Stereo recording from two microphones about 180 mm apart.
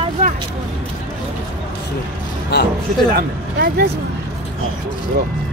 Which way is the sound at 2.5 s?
65° left (ahead or behind).